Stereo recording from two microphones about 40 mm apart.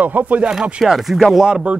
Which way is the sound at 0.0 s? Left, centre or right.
Right.